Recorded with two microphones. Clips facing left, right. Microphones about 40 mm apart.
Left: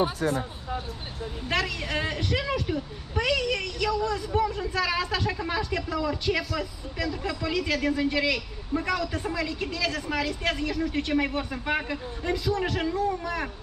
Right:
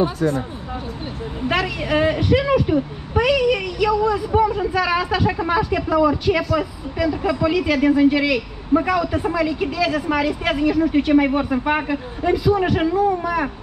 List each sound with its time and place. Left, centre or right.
1.5 s speech: centre